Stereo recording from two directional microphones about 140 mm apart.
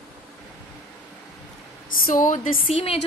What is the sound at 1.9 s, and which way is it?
Speech, 80° left.